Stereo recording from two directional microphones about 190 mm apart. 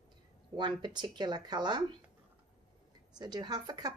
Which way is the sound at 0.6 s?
25° right (ahead or behind).